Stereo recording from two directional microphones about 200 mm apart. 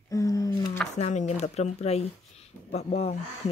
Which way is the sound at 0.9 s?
35° left (ahead or behind).